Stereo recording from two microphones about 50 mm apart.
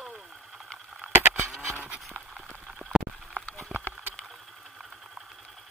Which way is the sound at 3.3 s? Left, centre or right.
Left.